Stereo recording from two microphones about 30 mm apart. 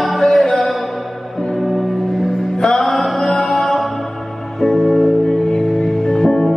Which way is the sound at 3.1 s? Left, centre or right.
Left.